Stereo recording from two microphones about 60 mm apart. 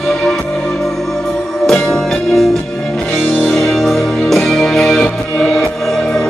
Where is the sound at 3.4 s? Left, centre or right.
Centre.